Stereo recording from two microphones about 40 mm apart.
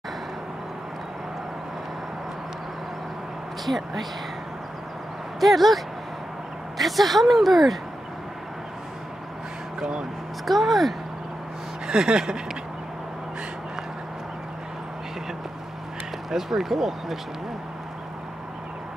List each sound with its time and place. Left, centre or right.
3.6 s a woman's voice: centre
5.4 s a woman's voice: centre
6.8 s a woman's voice: centre
9.8 s speech: centre
10.4 s a woman's voice: centre
11.9 s speech: centre
16.3 s speech: centre